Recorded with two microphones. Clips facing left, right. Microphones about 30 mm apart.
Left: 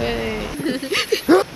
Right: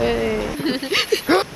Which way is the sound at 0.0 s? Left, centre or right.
Centre.